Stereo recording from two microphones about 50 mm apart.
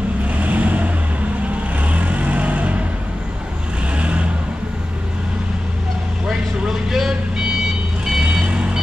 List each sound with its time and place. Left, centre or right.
0.4 s vehicle: right
3.9 s vehicle: right
6.9 s vehicle: centre